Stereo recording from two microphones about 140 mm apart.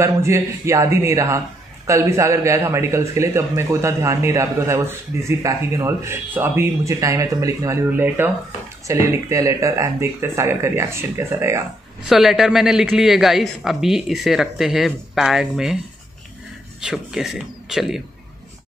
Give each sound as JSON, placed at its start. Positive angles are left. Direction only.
{"t": 0.0, "sound": "a man's voice", "side_deg": -20}
{"t": 12.1, "sound": "speech", "side_deg": 0}
{"t": 16.8, "sound": "speech", "side_deg": -5}